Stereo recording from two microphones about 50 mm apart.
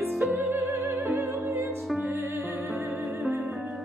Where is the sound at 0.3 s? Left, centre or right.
Right.